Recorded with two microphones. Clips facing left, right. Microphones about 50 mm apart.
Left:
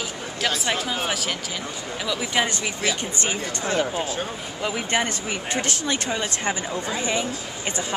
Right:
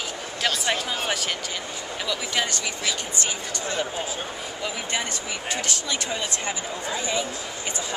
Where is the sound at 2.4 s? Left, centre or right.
Centre.